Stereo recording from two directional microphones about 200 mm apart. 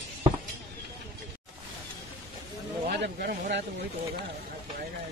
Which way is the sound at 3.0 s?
55° right (ahead or behind).